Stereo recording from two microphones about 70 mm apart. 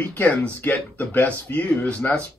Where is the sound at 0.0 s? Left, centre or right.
Left.